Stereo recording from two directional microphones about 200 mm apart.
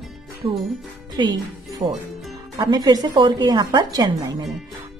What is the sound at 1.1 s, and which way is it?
A woman's voice, 20° right (ahead or behind).